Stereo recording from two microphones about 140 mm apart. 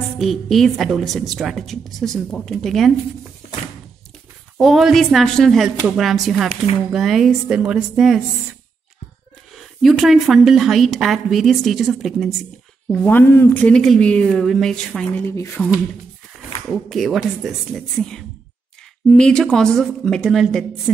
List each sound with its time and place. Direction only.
0.2 s a woman's voice: centre (ahead or behind)
4.6 s a woman's voice: centre (ahead or behind)
9.6 s a woman's voice: centre (ahead or behind)
12.9 s a woman's voice: 10° left (ahead or behind)
15.3 s speech: 20° left (ahead or behind)
16.6 s a woman's voice: centre (ahead or behind)